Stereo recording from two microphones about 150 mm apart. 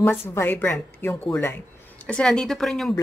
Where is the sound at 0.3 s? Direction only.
15° left (ahead or behind).